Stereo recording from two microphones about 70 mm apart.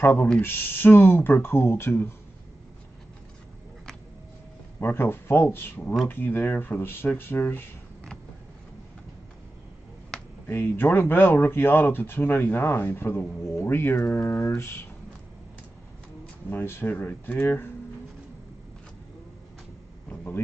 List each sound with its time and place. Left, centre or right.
0.0 s speech: left
4.7 s speech: left
10.4 s speech: left
14.5 s speech: left
16.4 s speech: left